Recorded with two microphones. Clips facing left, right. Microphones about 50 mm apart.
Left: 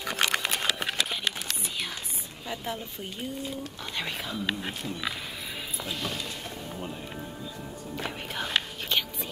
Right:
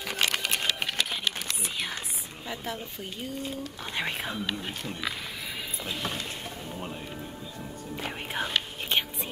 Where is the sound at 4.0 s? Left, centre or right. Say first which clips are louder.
Right 3 dB; right.